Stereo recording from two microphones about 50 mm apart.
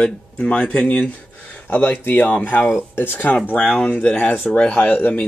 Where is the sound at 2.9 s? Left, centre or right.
Left.